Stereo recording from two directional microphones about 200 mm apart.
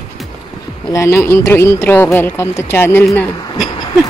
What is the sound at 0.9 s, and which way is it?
Speech, 15° left (ahead or behind).